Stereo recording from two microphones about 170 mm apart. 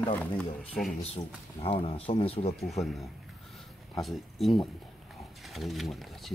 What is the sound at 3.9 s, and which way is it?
Speech, centre (ahead or behind).